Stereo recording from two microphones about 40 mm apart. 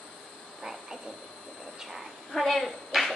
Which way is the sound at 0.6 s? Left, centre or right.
Centre.